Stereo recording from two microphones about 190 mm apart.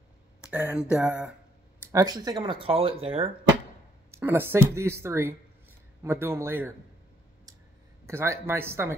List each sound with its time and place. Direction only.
0.4 s speech: 10° right (ahead or behind); by 3.3 s 30° right (ahead or behind)
4.1 s speech: 10° right (ahead or behind)
8.1 s speech: 15° right (ahead or behind)